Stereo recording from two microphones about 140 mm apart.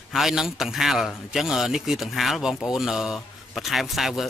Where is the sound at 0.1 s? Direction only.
Centre (ahead or behind).